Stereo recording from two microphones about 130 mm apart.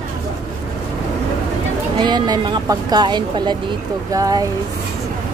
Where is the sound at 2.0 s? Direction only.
35° right (ahead or behind).